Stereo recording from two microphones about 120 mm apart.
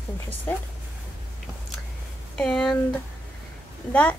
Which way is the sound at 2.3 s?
5° left (ahead or behind).